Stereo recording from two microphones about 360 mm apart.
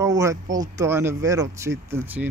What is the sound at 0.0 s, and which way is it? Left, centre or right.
Speech, centre.